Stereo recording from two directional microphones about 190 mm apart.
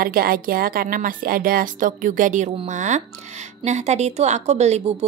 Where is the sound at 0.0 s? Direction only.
50° right (ahead or behind).